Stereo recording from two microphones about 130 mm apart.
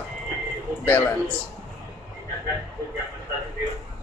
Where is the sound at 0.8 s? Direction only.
15° left (ahead or behind).